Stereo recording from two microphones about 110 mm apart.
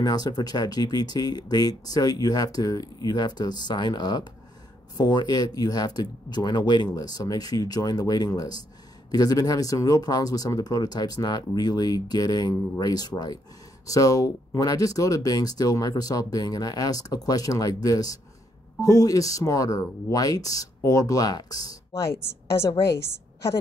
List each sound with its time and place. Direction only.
0.0 s speech: 40° left (ahead or behind)